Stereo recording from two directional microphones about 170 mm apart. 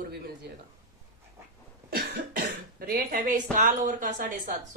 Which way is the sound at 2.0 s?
60° right (ahead or behind).